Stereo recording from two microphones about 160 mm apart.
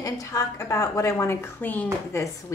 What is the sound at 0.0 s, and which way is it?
A woman's voice, 20° left (ahead or behind).